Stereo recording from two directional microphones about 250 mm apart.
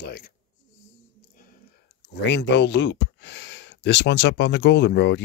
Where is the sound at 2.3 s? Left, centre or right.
Left.